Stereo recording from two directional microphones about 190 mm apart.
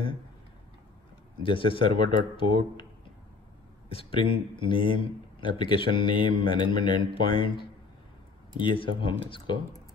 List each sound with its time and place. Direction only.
1.4 s speech: 25° left (ahead or behind)
3.9 s speech: 30° left (ahead or behind)